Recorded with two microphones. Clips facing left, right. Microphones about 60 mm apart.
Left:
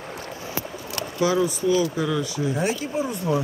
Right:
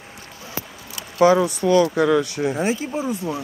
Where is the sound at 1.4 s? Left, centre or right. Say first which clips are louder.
Right 4 dB; right.